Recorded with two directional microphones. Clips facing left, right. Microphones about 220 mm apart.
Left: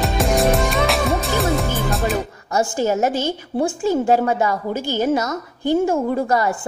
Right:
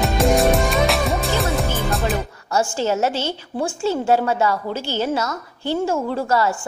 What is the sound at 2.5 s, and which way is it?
A woman's voice, 15° left (ahead or behind).